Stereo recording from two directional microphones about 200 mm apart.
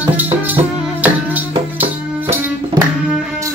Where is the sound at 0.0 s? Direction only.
10° right (ahead or behind).